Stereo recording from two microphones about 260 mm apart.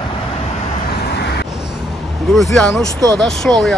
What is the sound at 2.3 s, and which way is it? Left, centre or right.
Speech, centre.